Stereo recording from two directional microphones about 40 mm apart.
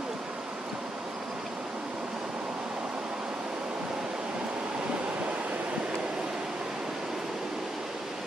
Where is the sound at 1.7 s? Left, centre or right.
Right.